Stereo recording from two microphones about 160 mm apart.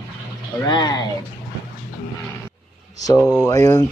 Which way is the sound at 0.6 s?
25° left (ahead or behind).